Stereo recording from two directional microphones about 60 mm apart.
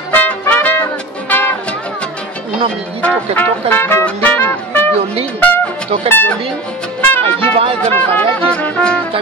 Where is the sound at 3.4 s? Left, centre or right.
Left.